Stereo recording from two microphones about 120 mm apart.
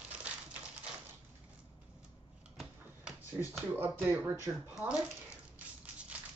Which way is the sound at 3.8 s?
20° right (ahead or behind).